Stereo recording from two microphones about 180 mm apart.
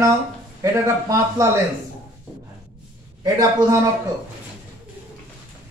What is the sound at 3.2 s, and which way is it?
Speech, 20° right (ahead or behind).